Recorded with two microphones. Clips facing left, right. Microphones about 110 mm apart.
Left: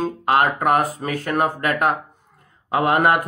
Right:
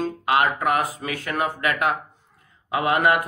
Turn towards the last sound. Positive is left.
turn(degrees=45)  # may be behind; listen again after turning